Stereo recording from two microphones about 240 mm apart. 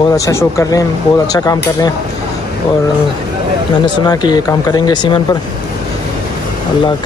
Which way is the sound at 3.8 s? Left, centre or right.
Centre.